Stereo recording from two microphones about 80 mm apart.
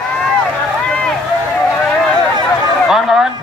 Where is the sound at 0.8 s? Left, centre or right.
Centre.